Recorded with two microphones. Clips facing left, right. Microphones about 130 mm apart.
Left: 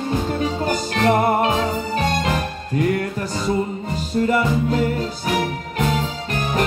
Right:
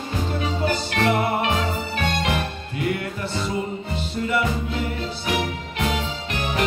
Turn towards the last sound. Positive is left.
turn(degrees=40)  # may be behind; listen again after turning